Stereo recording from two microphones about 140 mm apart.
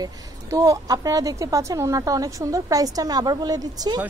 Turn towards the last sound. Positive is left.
turn(degrees=-30)  # may be behind; listen again after turning